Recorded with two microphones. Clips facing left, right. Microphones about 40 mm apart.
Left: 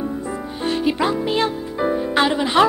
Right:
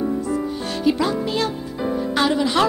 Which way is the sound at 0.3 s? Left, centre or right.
Left.